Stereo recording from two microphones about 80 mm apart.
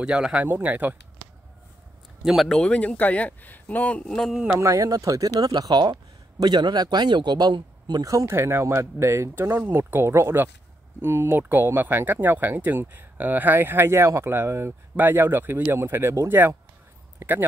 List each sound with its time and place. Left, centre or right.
0.0 s speech: centre
0.5 s speech: right
2.2 s speech: centre
4.1 s a man's voice: centre
4.5 s speech: right
5.5 s speech: right
8.4 s speech: right